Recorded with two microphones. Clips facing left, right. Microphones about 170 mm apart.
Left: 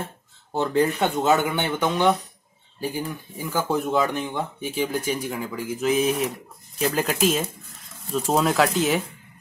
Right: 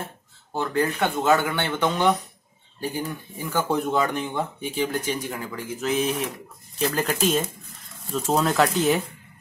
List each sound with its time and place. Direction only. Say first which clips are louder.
0.6 s speech: left 3 dB; 20° left (ahead or behind); by 9.0 s centre (ahead or behind)